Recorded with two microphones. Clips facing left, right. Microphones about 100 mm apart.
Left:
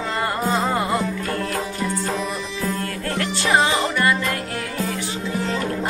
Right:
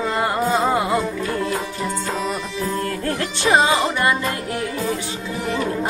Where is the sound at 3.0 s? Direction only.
25° right (ahead or behind).